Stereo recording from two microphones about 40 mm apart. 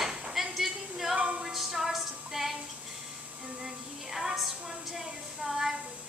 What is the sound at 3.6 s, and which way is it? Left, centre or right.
Music, centre.